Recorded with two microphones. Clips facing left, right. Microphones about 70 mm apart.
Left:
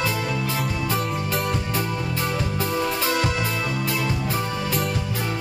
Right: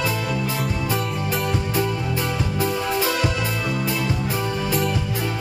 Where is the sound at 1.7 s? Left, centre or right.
Right.